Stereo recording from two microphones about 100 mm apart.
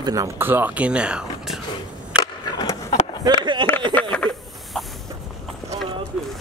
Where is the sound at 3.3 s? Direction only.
45° right (ahead or behind).